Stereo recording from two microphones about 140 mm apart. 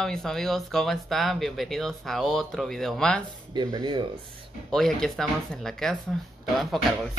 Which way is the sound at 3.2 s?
30° right (ahead or behind).